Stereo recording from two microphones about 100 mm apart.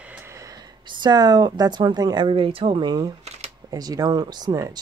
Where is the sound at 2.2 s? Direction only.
65° right (ahead or behind).